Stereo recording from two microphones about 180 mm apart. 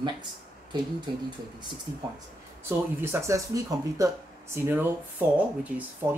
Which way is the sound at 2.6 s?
15° right (ahead or behind).